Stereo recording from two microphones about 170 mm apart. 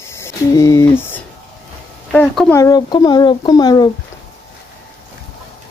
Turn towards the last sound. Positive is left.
turn(degrees=25)  # may be behind; listen again after turning